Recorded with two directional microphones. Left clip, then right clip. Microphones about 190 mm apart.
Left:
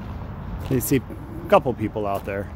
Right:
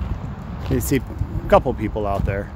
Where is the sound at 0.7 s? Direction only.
10° left (ahead or behind).